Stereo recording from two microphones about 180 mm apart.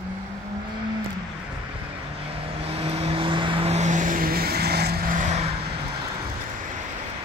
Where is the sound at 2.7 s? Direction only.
35° right (ahead or behind); by 5.0 s 65° right (ahead or behind).